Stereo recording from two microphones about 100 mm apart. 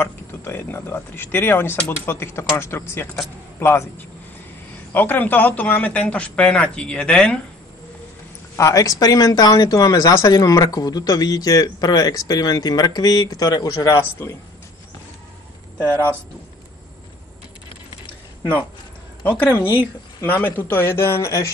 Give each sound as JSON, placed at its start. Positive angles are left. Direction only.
{"t": 0.0, "sound": "speech", "side_deg": 25}
{"t": 4.9, "sound": "speech", "side_deg": 20}
{"t": 8.5, "sound": "speech", "side_deg": 35}
{"t": 15.8, "sound": "speech", "side_deg": -25}
{"t": 19.3, "sound": "speech", "side_deg": 15}
{"t": 19.6, "sound": "speech", "side_deg": -20}
{"t": 20.2, "sound": "speech", "side_deg": 20}